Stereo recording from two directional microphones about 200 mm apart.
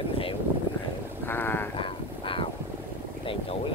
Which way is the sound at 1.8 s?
25° left (ahead or behind).